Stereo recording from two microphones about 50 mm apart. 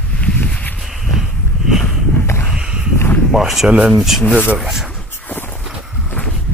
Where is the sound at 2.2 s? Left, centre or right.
Left.